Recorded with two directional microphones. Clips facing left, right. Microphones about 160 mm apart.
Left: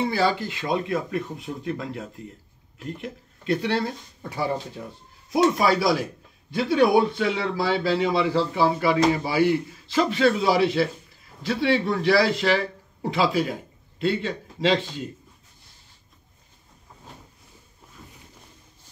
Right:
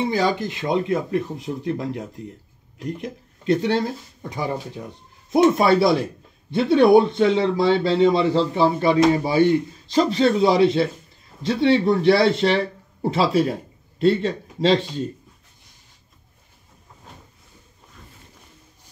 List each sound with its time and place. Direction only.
0.0 s speech: 15° right (ahead or behind)
3.4 s speech: 20° right (ahead or behind)
5.3 s speech: 25° right (ahead or behind)